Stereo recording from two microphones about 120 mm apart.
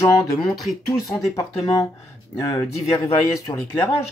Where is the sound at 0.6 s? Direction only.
Centre (ahead or behind).